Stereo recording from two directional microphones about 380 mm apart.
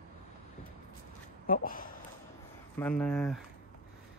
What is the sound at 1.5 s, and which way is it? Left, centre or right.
Speech, left.